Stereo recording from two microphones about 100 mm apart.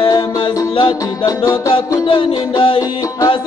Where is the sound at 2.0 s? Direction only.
60° left (ahead or behind).